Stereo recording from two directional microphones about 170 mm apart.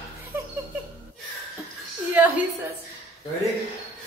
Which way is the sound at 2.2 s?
10° right (ahead or behind).